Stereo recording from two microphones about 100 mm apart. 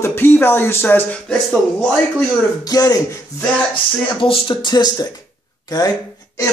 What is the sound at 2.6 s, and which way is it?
Speech, 40° left (ahead or behind).